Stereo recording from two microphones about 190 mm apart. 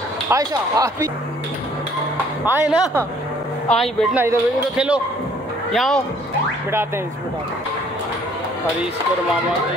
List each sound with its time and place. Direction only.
0.3 s speech: 20° right (ahead or behind)
2.4 s speech: 10° right (ahead or behind)
3.6 s speech: centre (ahead or behind)